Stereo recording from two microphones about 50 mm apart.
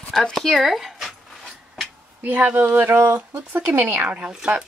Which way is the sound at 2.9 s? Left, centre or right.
Right.